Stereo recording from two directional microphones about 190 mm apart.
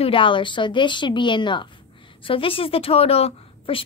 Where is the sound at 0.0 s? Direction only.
25° left (ahead or behind).